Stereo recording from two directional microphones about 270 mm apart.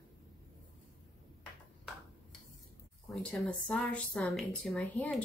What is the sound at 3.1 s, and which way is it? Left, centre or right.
Speech, centre.